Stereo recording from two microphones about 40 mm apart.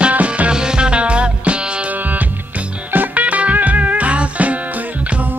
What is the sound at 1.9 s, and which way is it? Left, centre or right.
Music, right.